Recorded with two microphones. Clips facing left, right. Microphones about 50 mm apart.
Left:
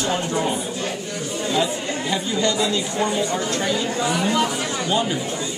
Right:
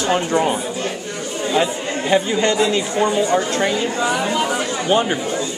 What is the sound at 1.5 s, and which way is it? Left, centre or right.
Speech, right.